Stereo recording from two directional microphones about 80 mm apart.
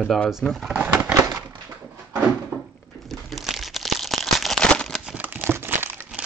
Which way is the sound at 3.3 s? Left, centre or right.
Centre.